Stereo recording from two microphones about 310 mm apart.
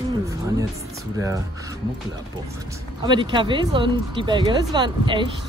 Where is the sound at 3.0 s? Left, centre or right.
Centre.